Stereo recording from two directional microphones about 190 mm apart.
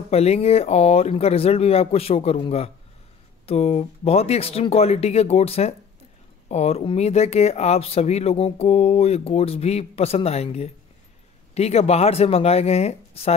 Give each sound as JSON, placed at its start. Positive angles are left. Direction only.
{"t": 0.1, "sound": "speech", "side_deg": 35}